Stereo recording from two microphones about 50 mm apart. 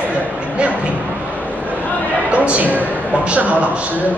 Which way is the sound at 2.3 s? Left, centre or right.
Right.